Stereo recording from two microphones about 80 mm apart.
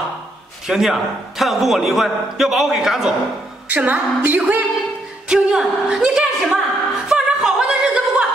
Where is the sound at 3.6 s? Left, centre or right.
Centre.